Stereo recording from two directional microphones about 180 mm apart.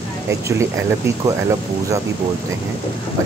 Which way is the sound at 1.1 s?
15° right (ahead or behind).